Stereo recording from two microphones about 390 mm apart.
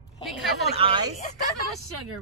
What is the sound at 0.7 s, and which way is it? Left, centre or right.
Speech, centre.